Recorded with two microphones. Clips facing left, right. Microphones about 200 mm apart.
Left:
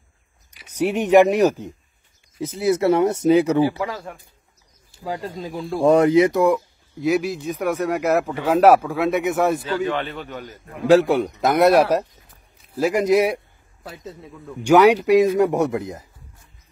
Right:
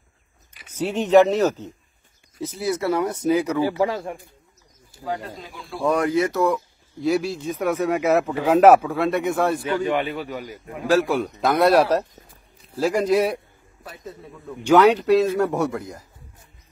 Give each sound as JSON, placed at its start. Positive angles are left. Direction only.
{"t": 0.7, "sound": "a man's voice", "side_deg": 15}
{"t": 3.7, "sound": "speech", "side_deg": -25}
{"t": 5.0, "sound": "speech", "side_deg": 40}
{"t": 5.9, "sound": "speech", "side_deg": 25}
{"t": 7.4, "sound": "a man's voice", "side_deg": 0}
{"t": 9.8, "sound": "a man's voice", "side_deg": -10}
{"t": 11.2, "sound": "a man's voice", "side_deg": 10}
{"t": 14.6, "sound": "a man's voice", "side_deg": 10}